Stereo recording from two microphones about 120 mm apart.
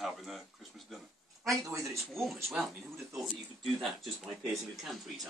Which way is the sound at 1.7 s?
25° right (ahead or behind).